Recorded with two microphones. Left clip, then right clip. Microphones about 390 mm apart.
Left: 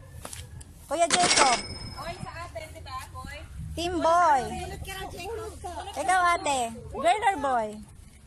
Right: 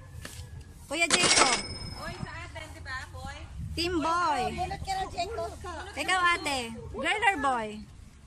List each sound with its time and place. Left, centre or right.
0.8 s speech: centre
3.7 s a woman's voice: centre